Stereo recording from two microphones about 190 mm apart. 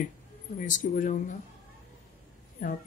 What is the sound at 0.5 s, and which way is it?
Speech, 45° left (ahead or behind).